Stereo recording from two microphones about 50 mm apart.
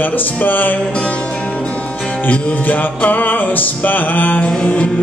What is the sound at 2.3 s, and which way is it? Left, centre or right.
Music, left.